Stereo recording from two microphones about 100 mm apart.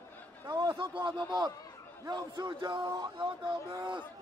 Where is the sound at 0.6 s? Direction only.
55° right (ahead or behind).